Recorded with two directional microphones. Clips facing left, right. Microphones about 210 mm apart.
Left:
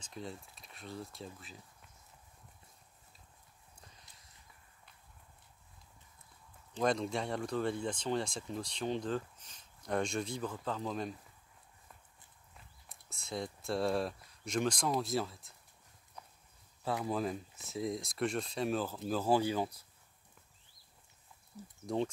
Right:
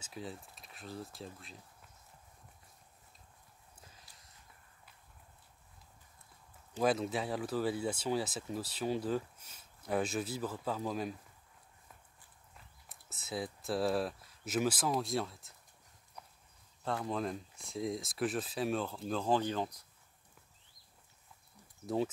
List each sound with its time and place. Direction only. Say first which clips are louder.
0.0 s speech: even; 5° right (ahead or behind)
6.8 s speech: right 1 dB; 5° right (ahead or behind)
12.8 s speech: right 1 dB; centre (ahead or behind)
17.0 s speech: left 1 dB; 5° left (ahead or behind)
21.8 s speech: right 1 dB; 5° right (ahead or behind)